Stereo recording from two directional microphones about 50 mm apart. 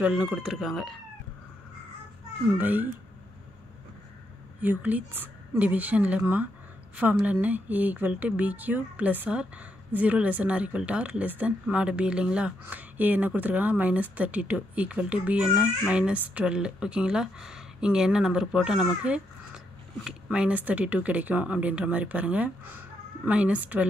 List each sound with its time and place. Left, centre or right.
0.0 s speech: right
0.3 s speech: centre
2.5 s speech: right
4.6 s speech: right
12.6 s speech: right; by 18.9 s centre
20.2 s speech: right
22.7 s a sound: right
23.3 s speech: right